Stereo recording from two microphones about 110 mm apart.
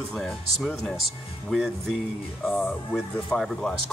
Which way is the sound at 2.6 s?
5° left (ahead or behind).